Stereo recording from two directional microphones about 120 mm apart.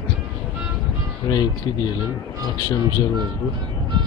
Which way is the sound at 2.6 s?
40° left (ahead or behind).